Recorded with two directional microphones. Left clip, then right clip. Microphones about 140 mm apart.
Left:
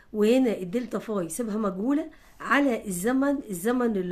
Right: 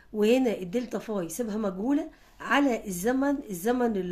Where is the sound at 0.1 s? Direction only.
25° left (ahead or behind).